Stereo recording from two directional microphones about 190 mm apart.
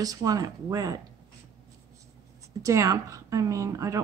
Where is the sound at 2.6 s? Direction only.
15° right (ahead or behind).